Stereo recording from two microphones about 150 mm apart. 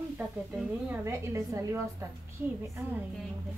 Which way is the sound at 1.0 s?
20° right (ahead or behind).